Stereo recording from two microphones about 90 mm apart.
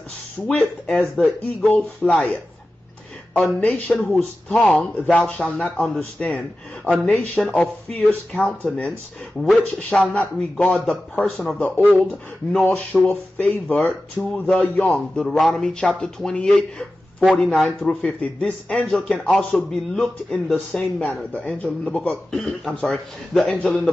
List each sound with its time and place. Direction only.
0.5 s speech: 15° left (ahead or behind)
1.1 s speech: centre (ahead or behind)
1.7 s speech: 15° left (ahead or behind)
3.3 s speech: centre (ahead or behind)
3.7 s speech: 15° left (ahead or behind)
9.8 s speech: 15° left (ahead or behind)
12.6 s speech: 15° left (ahead or behind)
15.2 s speech: centre (ahead or behind)
21.0 s speech: 15° left (ahead or behind)